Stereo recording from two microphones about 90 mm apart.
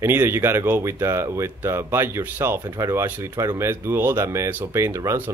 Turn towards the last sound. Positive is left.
turn(degrees=-30)  # may be behind; listen again after turning